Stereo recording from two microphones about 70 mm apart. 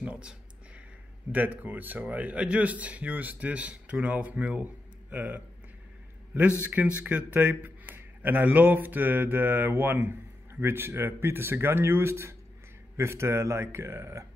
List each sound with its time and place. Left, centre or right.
0.0 s a sound: centre
1.3 s speech: right
6.6 s speech: right